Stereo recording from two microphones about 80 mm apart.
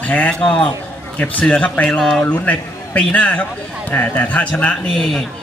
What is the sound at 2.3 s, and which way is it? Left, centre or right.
A man's voice, centre.